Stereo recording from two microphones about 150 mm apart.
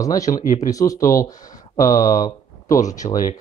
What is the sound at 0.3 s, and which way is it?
Speech, 60° left (ahead or behind).